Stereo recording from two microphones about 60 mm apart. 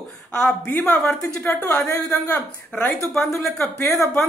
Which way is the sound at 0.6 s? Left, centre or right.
Left.